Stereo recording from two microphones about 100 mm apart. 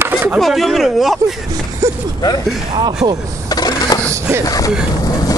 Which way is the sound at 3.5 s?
40° left (ahead or behind).